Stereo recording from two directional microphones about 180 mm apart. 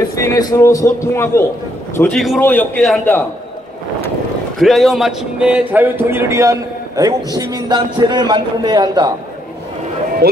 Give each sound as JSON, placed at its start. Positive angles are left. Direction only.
{"t": 0.1, "sound": "a man's voice", "side_deg": 15}
{"t": 2.0, "sound": "speech", "side_deg": 5}
{"t": 2.4, "sound": "a man's voice", "side_deg": 10}
{"t": 4.6, "sound": "a man's voice", "side_deg": 0}
{"t": 10.2, "sound": "speech", "side_deg": -55}